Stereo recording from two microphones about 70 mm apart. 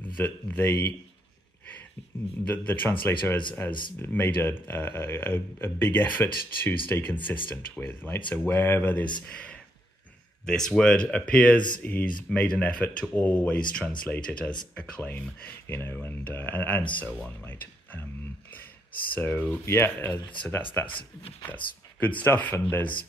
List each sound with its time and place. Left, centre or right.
0.1 s speech: left
2.4 s speech: left
9.2 s speech: centre
15.6 s speech: left
19.1 s speech: left
21.5 s speech: left